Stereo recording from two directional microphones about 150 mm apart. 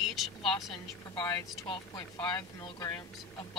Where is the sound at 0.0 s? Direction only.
Centre (ahead or behind).